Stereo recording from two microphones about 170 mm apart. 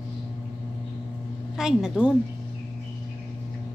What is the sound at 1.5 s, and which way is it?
Speech, 5° right (ahead or behind).